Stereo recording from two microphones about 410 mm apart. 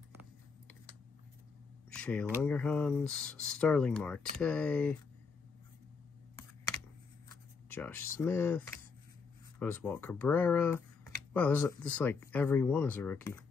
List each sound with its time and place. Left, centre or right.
1.9 s speech: centre
7.7 s speech: centre